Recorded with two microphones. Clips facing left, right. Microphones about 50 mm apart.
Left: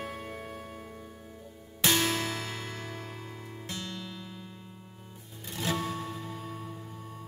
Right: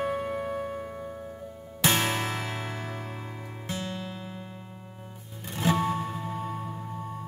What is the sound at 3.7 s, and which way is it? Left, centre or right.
Music, right.